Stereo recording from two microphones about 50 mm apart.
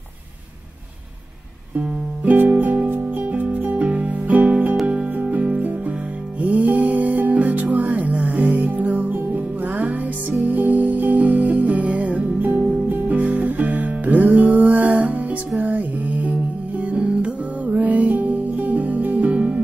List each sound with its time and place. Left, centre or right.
2.5 s music: right